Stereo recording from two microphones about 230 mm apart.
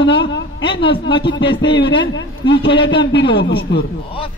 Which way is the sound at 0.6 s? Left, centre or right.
Left.